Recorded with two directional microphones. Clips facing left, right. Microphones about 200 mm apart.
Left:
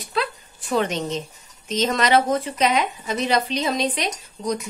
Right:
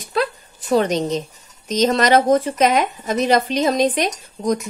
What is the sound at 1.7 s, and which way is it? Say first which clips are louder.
Speech: right 4 dB; 40° right (ahead or behind).